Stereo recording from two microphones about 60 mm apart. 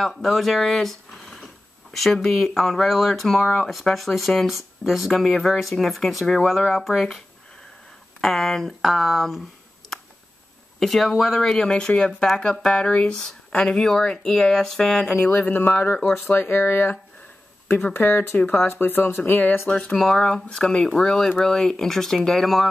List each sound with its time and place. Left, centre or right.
0.0 s speech: centre
8.2 s speech: centre
10.8 s speech: centre
15.3 s speech: left
17.9 s speech: left
20.0 s speech: centre